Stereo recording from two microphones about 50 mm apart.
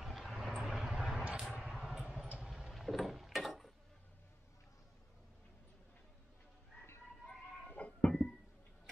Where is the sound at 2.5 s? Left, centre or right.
Centre.